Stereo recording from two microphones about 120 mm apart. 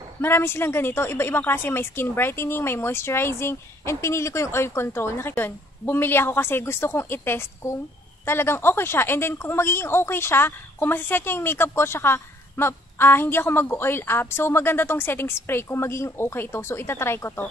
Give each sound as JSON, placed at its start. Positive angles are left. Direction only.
{"t": 0.2, "sound": "speech", "side_deg": 20}